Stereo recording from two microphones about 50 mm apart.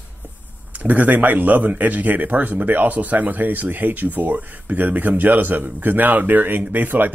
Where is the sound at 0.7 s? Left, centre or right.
Right.